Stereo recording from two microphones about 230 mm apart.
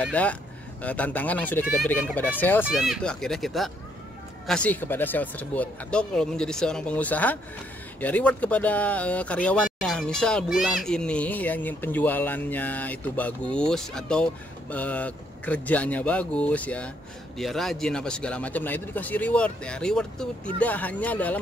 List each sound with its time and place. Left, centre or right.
0.0 s a man's voice: centre